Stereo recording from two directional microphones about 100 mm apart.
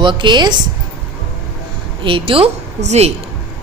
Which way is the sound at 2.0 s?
60° right (ahead or behind).